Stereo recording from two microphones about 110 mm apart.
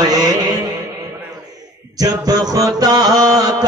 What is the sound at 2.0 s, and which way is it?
A man's voice, 35° right (ahead or behind).